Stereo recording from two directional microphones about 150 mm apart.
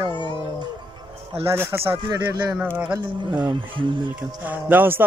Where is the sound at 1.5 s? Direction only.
15° right (ahead or behind).